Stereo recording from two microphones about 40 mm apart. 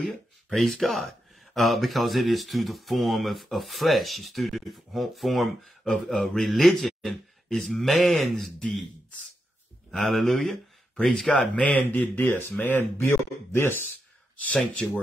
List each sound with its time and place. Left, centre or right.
0.6 s speech: centre
8.4 s a man's voice: left
9.8 s speech: centre
11.9 s speech: left
12.3 s speech: left
12.5 s speech: left
14.4 s speech: left